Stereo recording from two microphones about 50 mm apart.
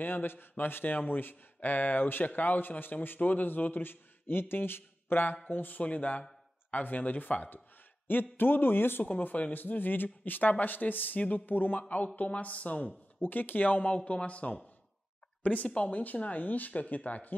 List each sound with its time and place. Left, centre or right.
0.0 s a man's voice: left
9.0 s a man's voice: left